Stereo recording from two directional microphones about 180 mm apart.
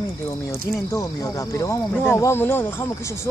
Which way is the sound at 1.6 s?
15° left (ahead or behind).